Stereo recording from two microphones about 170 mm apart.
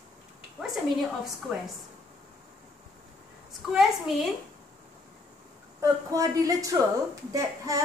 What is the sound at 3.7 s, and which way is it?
Speech, centre (ahead or behind).